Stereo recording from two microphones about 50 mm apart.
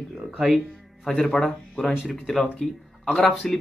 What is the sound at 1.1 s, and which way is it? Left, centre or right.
Speech, centre.